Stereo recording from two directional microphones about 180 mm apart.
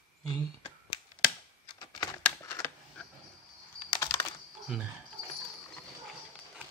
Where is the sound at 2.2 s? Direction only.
15° left (ahead or behind).